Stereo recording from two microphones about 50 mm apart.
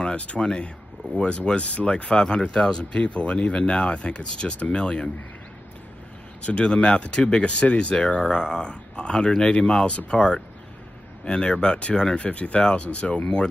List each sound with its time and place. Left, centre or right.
0.0 s speech: left
6.4 s speech: left